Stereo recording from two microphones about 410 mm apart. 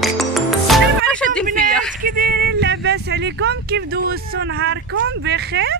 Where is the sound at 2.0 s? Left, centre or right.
Right.